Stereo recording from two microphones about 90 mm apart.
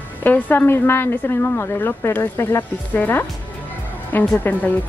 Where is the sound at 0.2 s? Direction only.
20° left (ahead or behind).